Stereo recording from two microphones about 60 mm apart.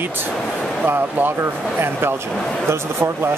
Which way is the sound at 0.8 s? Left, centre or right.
Right.